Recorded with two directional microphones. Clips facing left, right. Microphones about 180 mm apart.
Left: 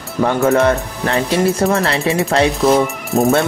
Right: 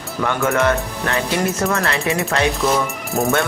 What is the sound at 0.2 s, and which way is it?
Speech, 35° left (ahead or behind).